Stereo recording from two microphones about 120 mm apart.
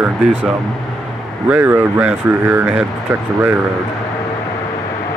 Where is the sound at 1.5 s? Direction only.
15° right (ahead or behind).